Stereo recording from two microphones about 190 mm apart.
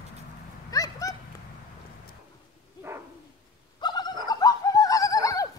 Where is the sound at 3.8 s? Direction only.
25° left (ahead or behind).